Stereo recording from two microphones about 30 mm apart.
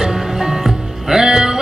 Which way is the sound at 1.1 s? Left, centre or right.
Right.